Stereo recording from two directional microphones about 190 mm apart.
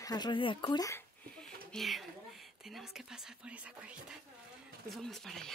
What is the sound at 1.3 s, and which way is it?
Speech, 5° left (ahead or behind).